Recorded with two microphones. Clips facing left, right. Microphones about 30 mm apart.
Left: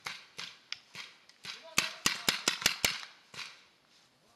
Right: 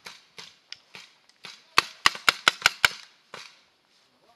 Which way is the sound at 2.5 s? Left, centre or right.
Right.